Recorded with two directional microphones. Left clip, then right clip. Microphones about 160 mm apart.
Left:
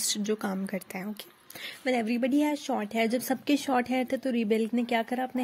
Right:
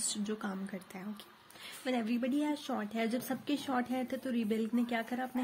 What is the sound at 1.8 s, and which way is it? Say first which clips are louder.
Speech: left 7 dB; 40° left (ahead or behind).